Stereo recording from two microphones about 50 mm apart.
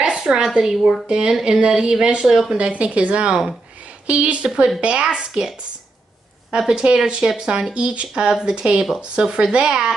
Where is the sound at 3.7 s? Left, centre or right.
Right.